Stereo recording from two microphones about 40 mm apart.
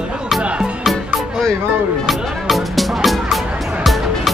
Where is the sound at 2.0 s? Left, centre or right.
Centre.